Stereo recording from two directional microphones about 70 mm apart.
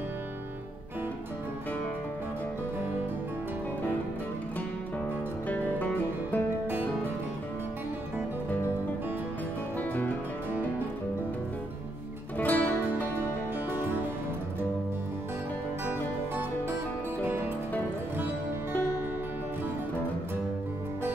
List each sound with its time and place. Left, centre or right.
5.5 s music: left
9.8 s music: left
12.4 s music: left
13.1 s music: right
15.8 s music: right